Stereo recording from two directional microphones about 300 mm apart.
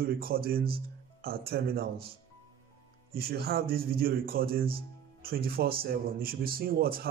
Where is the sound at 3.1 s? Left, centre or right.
Right.